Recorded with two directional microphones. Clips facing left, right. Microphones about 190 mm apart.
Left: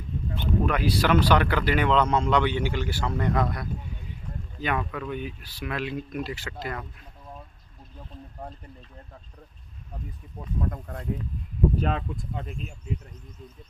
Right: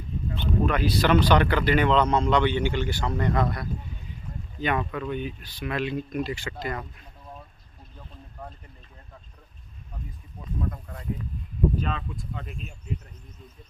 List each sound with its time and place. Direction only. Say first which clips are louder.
0.4 s speech: right 1 dB; 10° left (ahead or behind)
10.6 s speech: left 2 dB; 55° left (ahead or behind)